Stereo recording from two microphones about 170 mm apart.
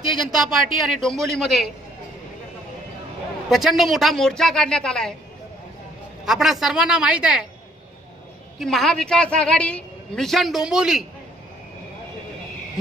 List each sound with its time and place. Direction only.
0.1 s a woman's voice: centre (ahead or behind)
3.4 s a woman's voice: centre (ahead or behind)
6.2 s a woman's voice: centre (ahead or behind)
8.5 s a woman's voice: centre (ahead or behind)